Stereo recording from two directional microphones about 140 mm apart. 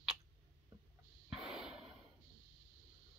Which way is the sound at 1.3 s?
5° right (ahead or behind).